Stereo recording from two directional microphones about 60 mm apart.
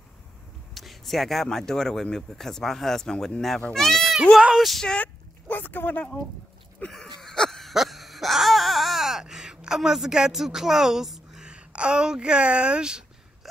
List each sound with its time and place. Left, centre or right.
0.7 s speech: centre
4.8 s speech: centre
5.5 s speech: left
6.9 s a sound: centre